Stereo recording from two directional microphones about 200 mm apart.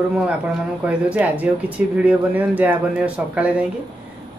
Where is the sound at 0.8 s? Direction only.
5° right (ahead or behind).